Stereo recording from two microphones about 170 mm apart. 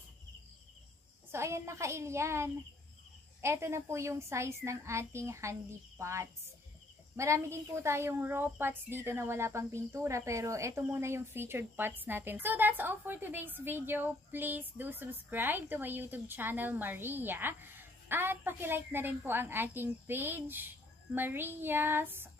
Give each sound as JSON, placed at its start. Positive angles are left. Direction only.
{"t": 1.3, "sound": "a woman's voice", "side_deg": -15}